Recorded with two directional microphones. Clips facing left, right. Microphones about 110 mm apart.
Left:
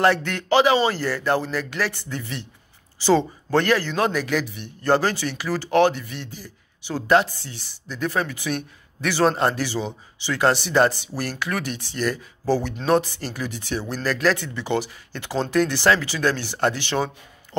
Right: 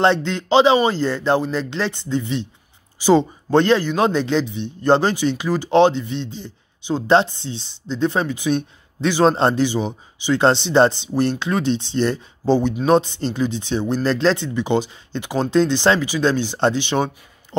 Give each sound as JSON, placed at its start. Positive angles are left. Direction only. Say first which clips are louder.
{"t": 0.0, "sound": "a man's voice", "louder": "right 2 dB", "side_deg": -20}